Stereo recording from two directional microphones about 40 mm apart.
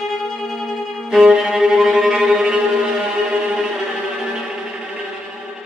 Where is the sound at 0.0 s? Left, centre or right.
Centre.